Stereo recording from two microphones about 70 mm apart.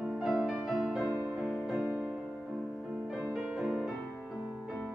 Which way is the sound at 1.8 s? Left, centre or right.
Centre.